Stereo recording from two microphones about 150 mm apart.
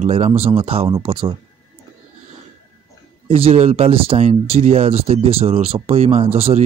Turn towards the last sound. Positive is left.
turn(degrees=-40)  # may be behind; listen again after turning